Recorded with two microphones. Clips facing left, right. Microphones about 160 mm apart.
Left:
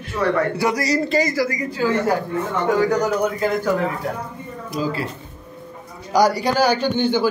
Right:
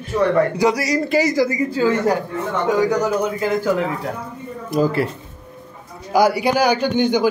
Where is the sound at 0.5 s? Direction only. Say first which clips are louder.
Right 2 dB; 15° right (ahead or behind).